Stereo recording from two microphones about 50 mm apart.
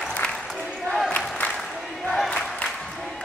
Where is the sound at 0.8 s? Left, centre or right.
Centre.